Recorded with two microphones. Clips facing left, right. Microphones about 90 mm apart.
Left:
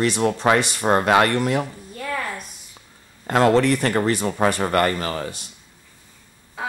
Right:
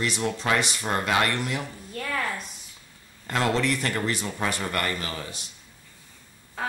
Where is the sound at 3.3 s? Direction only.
45° left (ahead or behind).